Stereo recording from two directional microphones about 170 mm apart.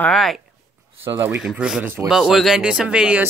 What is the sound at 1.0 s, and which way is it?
Speech, 15° right (ahead or behind).